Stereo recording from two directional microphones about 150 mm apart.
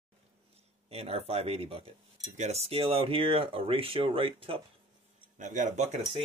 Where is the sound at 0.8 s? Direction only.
40° right (ahead or behind).